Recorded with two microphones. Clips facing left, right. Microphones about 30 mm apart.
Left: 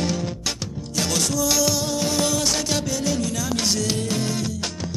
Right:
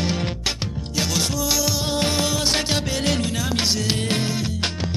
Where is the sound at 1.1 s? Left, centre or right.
Centre.